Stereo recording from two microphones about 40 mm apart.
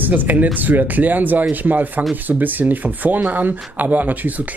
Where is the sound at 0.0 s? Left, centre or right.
Right.